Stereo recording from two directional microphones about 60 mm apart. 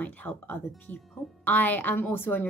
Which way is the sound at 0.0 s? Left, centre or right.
Left.